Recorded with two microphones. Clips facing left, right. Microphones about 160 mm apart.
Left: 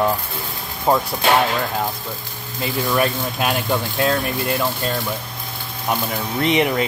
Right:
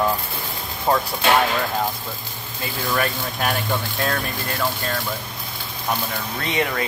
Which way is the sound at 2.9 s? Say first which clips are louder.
Left 3 dB; 15° left (ahead or behind).